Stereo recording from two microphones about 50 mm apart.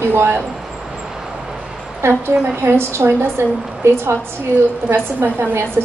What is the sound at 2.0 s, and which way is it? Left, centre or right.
A woman's voice, right.